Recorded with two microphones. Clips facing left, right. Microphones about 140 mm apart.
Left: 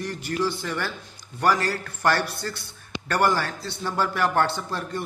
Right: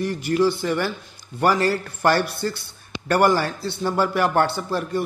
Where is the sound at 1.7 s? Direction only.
25° right (ahead or behind).